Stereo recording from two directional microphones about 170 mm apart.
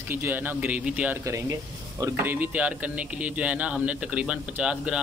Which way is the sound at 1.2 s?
20° right (ahead or behind).